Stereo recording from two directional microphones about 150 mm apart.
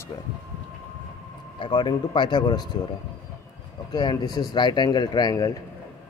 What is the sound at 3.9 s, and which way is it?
Speech, 30° left (ahead or behind).